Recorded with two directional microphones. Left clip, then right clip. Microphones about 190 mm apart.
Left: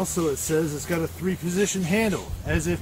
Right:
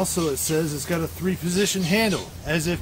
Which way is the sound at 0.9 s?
15° right (ahead or behind).